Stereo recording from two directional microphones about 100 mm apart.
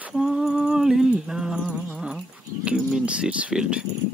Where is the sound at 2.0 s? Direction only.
5° right (ahead or behind).